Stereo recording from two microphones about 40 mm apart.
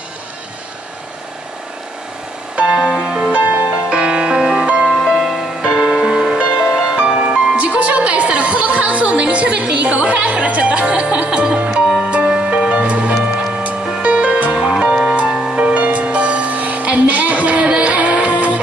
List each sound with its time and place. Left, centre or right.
2.5 s music: right
5.0 s music: centre
5.6 s music: centre
6.7 s music: centre
7.0 s music: right
11.7 s music: centre
12.0 s music: right
15.2 s music: centre
15.5 s music: right